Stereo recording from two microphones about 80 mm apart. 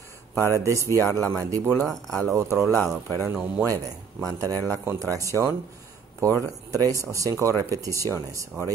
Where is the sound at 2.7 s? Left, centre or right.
Left.